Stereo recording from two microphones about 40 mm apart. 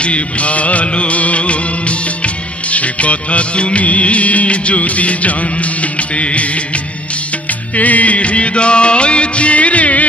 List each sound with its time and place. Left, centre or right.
0.0 s music: left
7.7 s music: left